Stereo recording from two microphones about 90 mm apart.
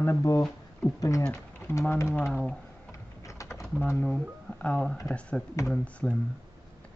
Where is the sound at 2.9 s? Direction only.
35° left (ahead or behind).